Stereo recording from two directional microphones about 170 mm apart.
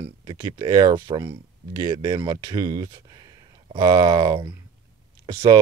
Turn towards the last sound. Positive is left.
turn(degrees=-25)  # may be behind; listen again after turning